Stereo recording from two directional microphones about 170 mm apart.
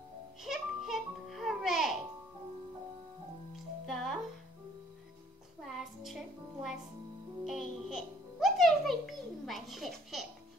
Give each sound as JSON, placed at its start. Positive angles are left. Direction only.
{"t": 0.4, "sound": "music", "side_deg": 0}
{"t": 3.8, "sound": "music", "side_deg": 0}
{"t": 5.6, "sound": "music", "side_deg": 0}